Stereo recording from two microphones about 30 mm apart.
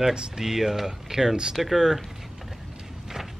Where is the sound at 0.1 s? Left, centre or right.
Centre.